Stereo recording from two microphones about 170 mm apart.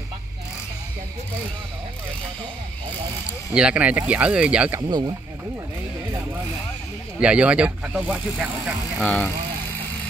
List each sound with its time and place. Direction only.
3.5 s speech: 5° right (ahead or behind)
4.7 s speech: 25° right (ahead or behind)
7.2 s speech: 5° right (ahead or behind)
9.0 s speech: 5° left (ahead or behind)